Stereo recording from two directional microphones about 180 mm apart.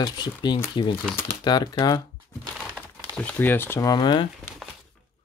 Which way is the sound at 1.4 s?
25° left (ahead or behind).